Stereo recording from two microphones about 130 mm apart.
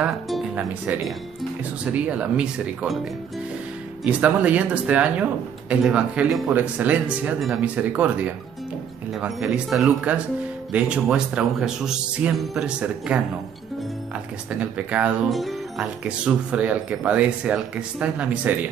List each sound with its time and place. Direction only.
0.0 s music: 5° right (ahead or behind)
1.9 s speech: 10° right (ahead or behind)
4.0 s speech: 10° right (ahead or behind)
14.6 s speech: 10° right (ahead or behind)
16.3 s speech: 10° right (ahead or behind)